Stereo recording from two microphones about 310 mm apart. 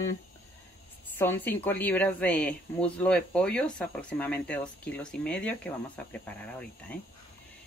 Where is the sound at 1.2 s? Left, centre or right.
Centre.